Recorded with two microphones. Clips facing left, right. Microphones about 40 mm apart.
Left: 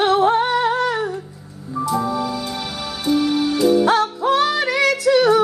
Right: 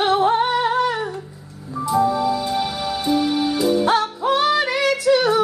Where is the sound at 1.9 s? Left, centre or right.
Centre.